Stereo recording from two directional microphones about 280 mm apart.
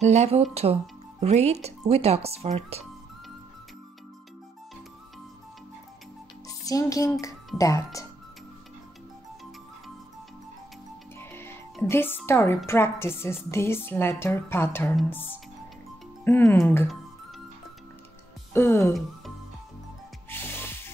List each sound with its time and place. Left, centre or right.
0.0 s speech: right
6.6 s speech: centre
11.1 s speech: centre
18.5 s speech: centre
20.2 s music: centre